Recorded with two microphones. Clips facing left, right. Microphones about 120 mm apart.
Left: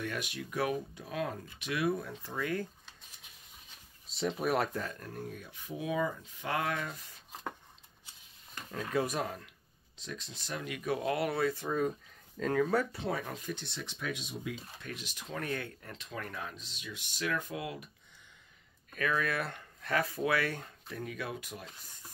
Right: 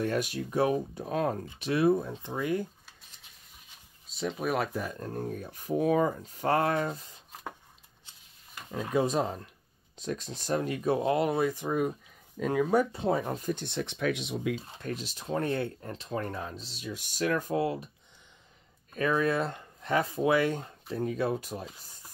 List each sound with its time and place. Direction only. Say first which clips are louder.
0.0 s speech: right 8 dB; 40° right (ahead or behind); by 2.7 s 20° right (ahead or behind)
4.1 s speech: right 1 dB; centre (ahead or behind)
4.9 s speech: right 8 dB; 30° right (ahead or behind)
5.2 s speech: right 7 dB; 40° right (ahead or behind)
8.6 s speech: right 5 dB; 20° right (ahead or behind)
9.9 s speech: right 9 dB; 45° right (ahead or behind); by 13.4 s 25° right (ahead or behind)
13.4 s speech: right 8 dB; 45° right (ahead or behind); by 14.5 s 75° right (ahead or behind)
14.8 s speech: right 8 dB; 35° right (ahead or behind)
18.9 s speech: right 6 dB; 30° right (ahead or behind)